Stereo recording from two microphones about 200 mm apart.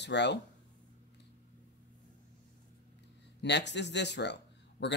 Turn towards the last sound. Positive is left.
turn(degrees=60)  # may be behind; listen again after turning